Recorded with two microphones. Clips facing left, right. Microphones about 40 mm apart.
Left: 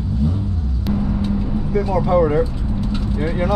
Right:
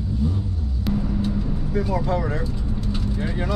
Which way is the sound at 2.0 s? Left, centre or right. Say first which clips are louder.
Left 9 dB; left.